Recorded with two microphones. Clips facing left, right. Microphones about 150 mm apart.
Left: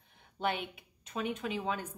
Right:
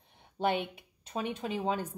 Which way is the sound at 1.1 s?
35° right (ahead or behind).